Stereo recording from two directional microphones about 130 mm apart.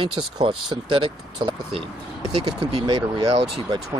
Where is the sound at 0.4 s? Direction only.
40° right (ahead or behind).